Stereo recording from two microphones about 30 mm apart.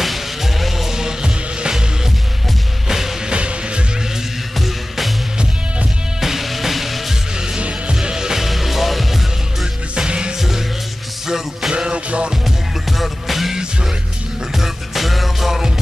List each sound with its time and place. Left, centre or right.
0.0 s music: centre
0.9 s music: right
3.3 s music: right
4.6 s music: centre
6.2 s music: centre
7.9 s music: right
8.4 s music: centre
9.9 s music: right
11.2 s music: centre
11.9 s music: right
12.4 s music: centre